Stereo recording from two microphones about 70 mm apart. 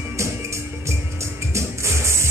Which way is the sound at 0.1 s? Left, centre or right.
Right.